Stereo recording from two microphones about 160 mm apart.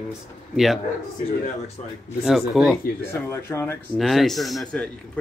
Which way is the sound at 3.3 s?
15° left (ahead or behind).